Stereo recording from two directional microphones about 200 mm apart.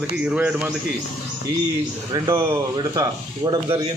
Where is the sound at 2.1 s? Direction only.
15° right (ahead or behind).